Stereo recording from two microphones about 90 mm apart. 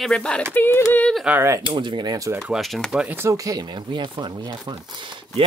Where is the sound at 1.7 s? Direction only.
65° right (ahead or behind).